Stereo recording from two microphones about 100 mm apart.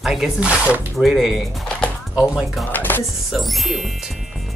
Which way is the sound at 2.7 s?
20° left (ahead or behind).